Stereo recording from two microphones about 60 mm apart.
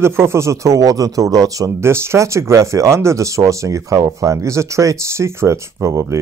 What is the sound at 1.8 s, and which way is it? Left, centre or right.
Speech, right.